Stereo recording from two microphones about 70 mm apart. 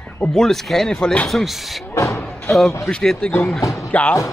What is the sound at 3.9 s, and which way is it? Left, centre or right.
Speech, left.